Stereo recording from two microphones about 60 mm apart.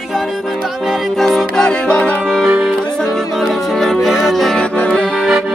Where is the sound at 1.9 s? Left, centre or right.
Left.